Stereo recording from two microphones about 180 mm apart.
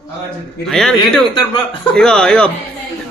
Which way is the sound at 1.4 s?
30° left (ahead or behind).